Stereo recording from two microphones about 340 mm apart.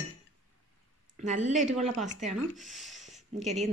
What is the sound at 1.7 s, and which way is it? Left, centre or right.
Speech, centre.